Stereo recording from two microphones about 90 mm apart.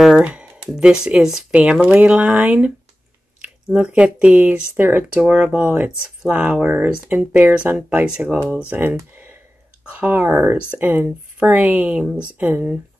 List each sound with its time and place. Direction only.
0.2 s speech: 15° right (ahead or behind)
9.9 s speech: 20° right (ahead or behind)